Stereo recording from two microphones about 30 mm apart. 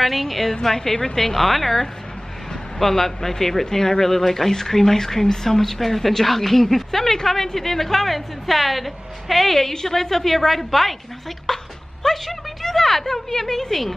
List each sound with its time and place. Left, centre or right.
0.0 s a woman's voice: centre
0.5 s speech: centre
11.4 s speech: centre